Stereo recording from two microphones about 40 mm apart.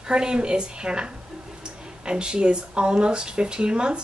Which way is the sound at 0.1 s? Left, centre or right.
Right.